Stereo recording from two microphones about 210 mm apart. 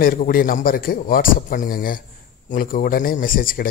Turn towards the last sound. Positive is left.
turn(degrees=40)  # may be behind; listen again after turning